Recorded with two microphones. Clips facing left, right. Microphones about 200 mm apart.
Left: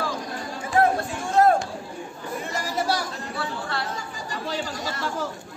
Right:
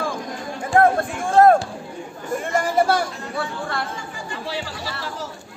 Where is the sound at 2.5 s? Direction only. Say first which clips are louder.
Right 8 dB; 55° right (ahead or behind).